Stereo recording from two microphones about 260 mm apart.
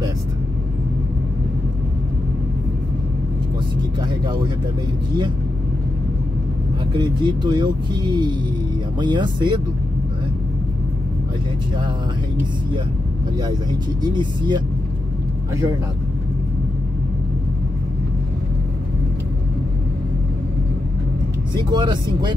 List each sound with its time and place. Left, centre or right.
4.1 s music: centre
6.9 s speech: centre
13.4 s speech: centre
21.6 s speech: centre